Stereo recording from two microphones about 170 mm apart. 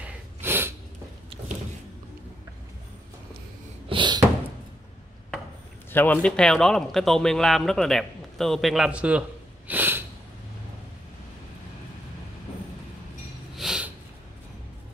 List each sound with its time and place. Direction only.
0.0 s snort: 10° right (ahead or behind)
3.9 s a sound: 25° right (ahead or behind)
5.9 s speech: 10° left (ahead or behind); by 9.2 s 5° right (ahead or behind)
9.7 s sneeze: 10° right (ahead or behind)
13.6 s snort: 5° right (ahead or behind)